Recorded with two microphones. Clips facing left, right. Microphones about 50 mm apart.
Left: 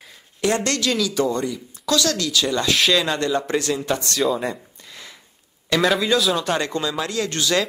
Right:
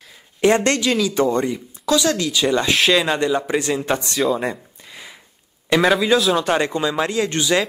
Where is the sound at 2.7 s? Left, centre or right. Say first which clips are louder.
Right 2 dB; centre; by 4.2 s right.